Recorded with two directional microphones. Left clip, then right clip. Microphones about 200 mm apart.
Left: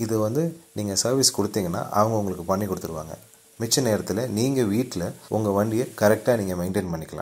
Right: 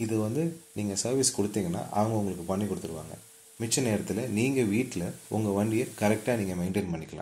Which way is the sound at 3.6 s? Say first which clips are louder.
Left 6 dB; 25° left (ahead or behind).